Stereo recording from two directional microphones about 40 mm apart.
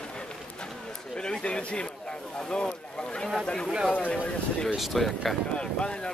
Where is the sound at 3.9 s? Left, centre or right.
Left.